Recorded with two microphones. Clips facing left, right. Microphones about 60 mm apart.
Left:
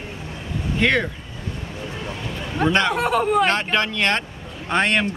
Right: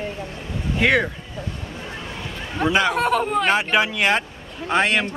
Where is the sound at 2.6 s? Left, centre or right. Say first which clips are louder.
Even; centre.